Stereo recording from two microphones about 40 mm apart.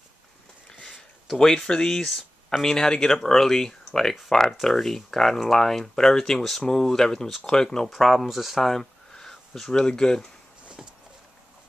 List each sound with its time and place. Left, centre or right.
1.4 s speech: centre
2.0 s a sound: centre
2.6 s speech: centre
8.0 s speech: centre
9.1 s a sound: centre
9.7 s speech: centre